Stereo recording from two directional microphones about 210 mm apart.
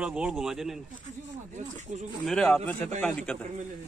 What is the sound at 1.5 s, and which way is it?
Speech, 35° right (ahead or behind).